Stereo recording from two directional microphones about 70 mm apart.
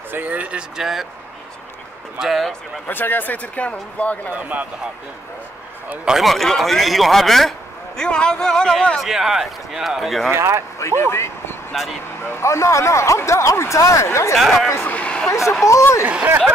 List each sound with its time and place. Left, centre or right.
0.1 s speech: right; by 1.0 s centre
2.1 s a man's voice: centre
2.9 s speech: left
4.3 s speech: right
6.0 s a man's voice: centre
9.0 s a man's voice: centre
10.3 s speech: right
10.8 s speech: left
11.7 s a man's voice: centre
12.2 s speech: left
14.9 s a sound: centre
15.6 s speech: left
16.0 s speech: centre